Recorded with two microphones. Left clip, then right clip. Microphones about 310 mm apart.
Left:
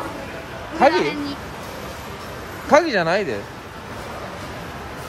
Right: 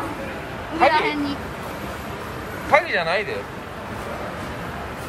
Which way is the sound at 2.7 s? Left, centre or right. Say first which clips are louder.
Left 2 dB; left.